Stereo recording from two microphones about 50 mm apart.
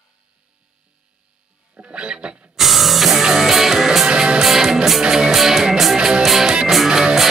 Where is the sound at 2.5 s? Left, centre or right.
Centre.